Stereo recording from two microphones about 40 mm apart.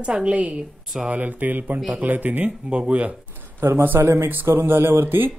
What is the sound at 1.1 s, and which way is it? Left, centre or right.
Speech, right.